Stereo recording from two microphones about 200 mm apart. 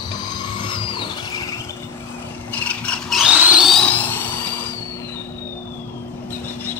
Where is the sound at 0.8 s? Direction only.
25° left (ahead or behind).